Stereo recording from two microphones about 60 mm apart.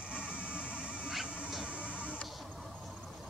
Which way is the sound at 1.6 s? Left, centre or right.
Right.